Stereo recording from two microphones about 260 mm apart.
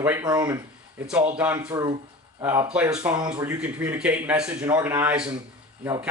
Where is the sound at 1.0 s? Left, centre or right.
Centre.